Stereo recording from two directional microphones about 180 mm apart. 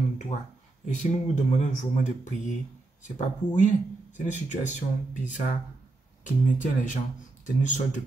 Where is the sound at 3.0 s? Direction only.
45° left (ahead or behind).